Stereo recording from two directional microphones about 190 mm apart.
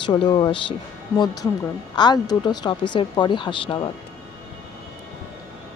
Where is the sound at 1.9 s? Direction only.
20° left (ahead or behind).